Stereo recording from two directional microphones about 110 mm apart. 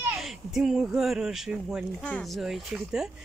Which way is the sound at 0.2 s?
5° right (ahead or behind).